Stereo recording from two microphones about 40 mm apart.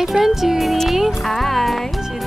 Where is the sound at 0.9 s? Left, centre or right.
Centre.